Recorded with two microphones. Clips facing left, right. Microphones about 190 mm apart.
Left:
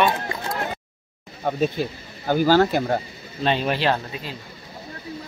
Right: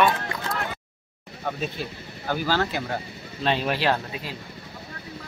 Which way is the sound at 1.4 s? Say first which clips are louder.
Left 7 dB; 40° left (ahead or behind).